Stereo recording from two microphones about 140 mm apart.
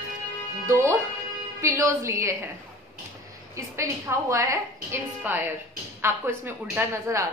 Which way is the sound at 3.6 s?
20° right (ahead or behind).